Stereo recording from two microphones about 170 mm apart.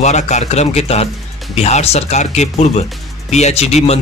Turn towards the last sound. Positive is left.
turn(degrees=40)  # may be behind; listen again after turning